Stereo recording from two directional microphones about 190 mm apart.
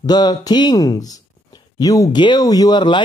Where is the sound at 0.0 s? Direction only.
20° left (ahead or behind).